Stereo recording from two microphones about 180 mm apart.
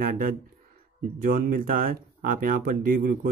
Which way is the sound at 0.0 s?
50° right (ahead or behind).